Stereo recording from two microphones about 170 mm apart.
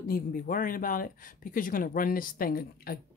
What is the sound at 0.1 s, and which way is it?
Speech, 55° left (ahead or behind).